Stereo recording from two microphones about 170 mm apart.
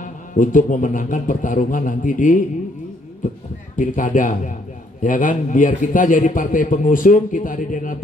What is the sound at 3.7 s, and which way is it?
Speech, 50° left (ahead or behind).